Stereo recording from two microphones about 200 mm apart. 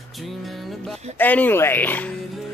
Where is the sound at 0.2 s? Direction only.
Centre (ahead or behind).